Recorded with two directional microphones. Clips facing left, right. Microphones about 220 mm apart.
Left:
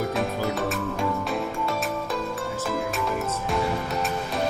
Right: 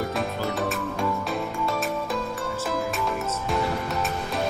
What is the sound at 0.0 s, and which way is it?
Music, centre (ahead or behind).